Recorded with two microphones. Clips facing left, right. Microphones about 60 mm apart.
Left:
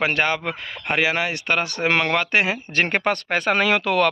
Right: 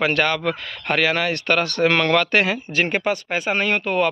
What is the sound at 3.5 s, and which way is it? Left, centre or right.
Speech, left.